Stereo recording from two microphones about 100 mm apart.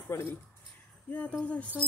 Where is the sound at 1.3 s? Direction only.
10° left (ahead or behind).